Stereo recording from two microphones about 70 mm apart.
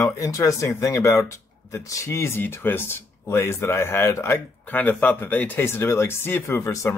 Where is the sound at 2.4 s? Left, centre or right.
Left.